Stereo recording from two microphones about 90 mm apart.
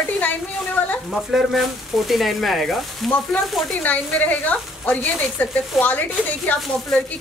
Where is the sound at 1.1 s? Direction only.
5° right (ahead or behind).